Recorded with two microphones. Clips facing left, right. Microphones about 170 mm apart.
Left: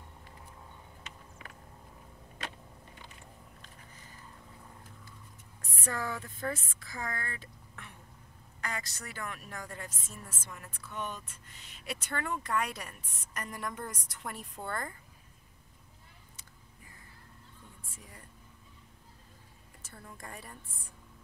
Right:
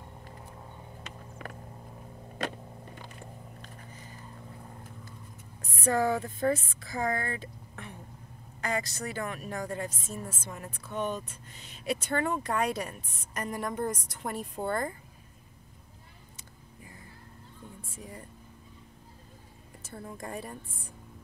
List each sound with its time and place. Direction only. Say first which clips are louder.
1.0 s vehicle: right 9 dB; 50° right (ahead or behind)
2.3 s a sound: right 9 dB; 45° right (ahead or behind)
5.9 s speech: right 10 dB; 30° right (ahead or behind)
19.9 s speech: right 8 dB; 30° right (ahead or behind)